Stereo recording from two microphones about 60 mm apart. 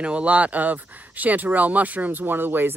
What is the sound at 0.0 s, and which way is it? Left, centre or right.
Speech, right.